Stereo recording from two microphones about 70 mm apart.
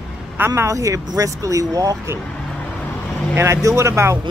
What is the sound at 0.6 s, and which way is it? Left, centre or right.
Speech, right.